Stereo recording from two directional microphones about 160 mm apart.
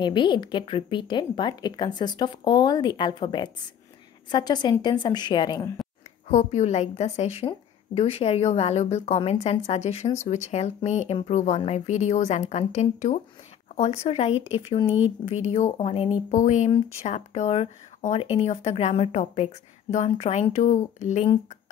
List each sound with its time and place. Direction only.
0.0 s a woman's voice: 30° left (ahead or behind)
6.3 s speech: 45° left (ahead or behind)